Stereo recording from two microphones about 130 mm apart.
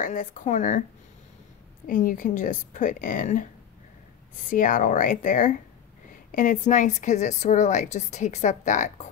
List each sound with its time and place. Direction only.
0.0 s a woman's voice: 80° left
1.9 s a woman's voice: 90° left
4.5 s speech: 90° left
6.3 s a woman's voice: 75° left (ahead or behind)